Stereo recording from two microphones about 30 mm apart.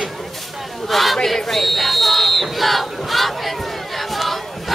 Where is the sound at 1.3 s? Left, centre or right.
Centre.